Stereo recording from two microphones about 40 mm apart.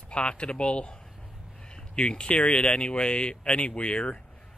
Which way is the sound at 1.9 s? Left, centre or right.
Left.